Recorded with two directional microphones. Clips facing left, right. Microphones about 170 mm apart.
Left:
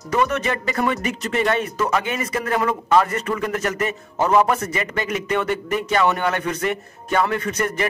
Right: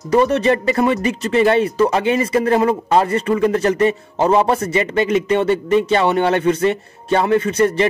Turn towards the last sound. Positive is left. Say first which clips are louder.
# right 7 dB
turn(degrees=-25)  # may be behind; listen again after turning